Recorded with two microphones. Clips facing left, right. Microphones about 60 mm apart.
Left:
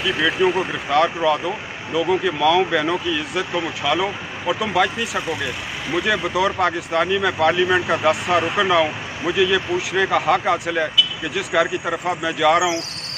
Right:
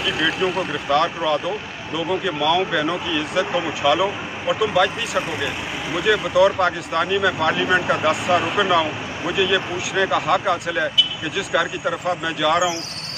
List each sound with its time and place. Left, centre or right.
0.0 s speech: centre